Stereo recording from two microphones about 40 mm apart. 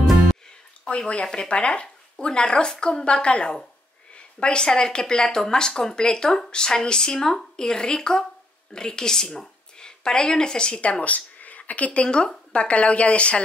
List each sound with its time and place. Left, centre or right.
0.0 s music: centre
0.8 s a woman's voice: left